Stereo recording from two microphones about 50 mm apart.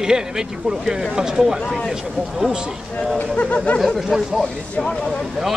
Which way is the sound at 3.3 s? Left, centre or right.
Left.